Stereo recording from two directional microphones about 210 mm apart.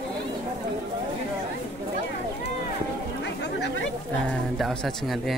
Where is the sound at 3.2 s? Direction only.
55° left (ahead or behind).